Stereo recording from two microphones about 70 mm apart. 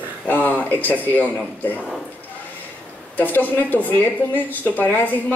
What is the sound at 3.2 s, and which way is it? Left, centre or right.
Speech, left.